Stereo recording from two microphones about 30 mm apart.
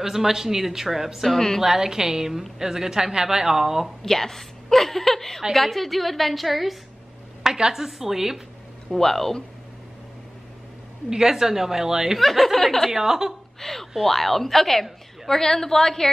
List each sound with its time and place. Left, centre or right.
0.0 s speech: centre
4.0 s a woman's voice: centre
7.4 s speech: centre
8.9 s a woman's voice: centre
11.1 s speech: centre
12.2 s a woman's voice: centre
12.9 s speech: centre
13.6 s a woman's voice: centre